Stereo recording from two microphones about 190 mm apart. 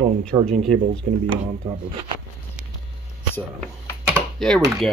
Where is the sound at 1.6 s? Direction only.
25° right (ahead or behind).